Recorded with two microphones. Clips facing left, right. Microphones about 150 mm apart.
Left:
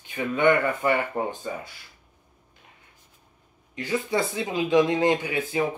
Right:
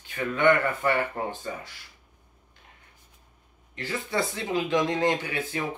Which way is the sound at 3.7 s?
15° left (ahead or behind).